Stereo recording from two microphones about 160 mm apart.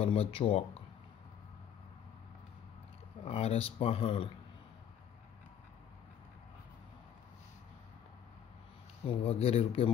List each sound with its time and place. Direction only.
0.0 s speech: 40° left (ahead or behind)
3.3 s speech: 40° left (ahead or behind)
9.0 s speech: 35° left (ahead or behind)